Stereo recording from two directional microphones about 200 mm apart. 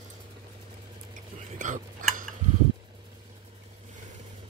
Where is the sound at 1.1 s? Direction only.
40° right (ahead or behind).